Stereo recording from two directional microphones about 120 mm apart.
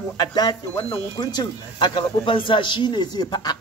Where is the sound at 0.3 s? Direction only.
35° left (ahead or behind).